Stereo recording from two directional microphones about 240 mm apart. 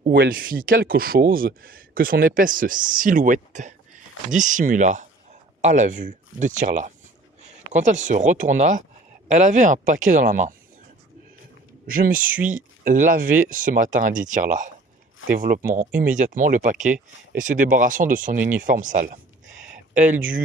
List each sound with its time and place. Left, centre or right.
0.1 s speech: right
11.9 s speech: right